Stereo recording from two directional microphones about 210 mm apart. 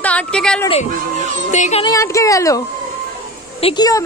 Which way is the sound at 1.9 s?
15° left (ahead or behind).